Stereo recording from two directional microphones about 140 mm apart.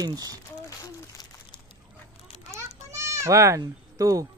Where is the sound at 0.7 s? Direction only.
25° left (ahead or behind).